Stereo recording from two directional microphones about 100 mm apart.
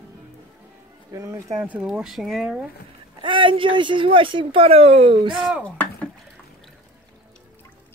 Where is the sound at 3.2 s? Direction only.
55° right (ahead or behind).